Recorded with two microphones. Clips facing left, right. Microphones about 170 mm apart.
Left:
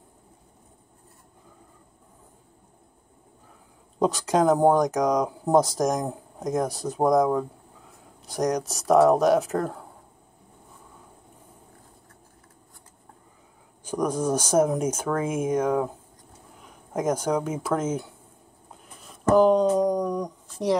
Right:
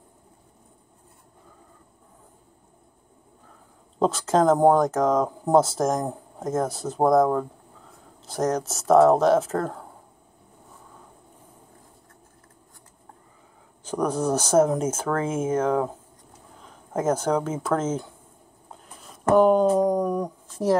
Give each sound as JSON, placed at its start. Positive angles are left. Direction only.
{"t": 4.0, "sound": "speech", "side_deg": 15}
{"t": 13.8, "sound": "speech", "side_deg": 10}
{"t": 19.3, "sound": "a sound", "side_deg": -5}